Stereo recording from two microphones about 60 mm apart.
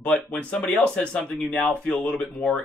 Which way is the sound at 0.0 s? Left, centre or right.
Left.